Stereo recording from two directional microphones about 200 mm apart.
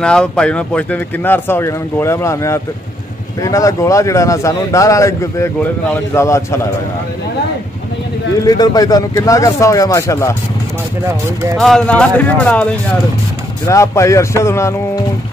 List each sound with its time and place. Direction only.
0.0 s speech: 5° left (ahead or behind)
8.5 s speech: 20° left (ahead or behind)
11.5 s speech: centre (ahead or behind)
13.7 s speech: 15° left (ahead or behind)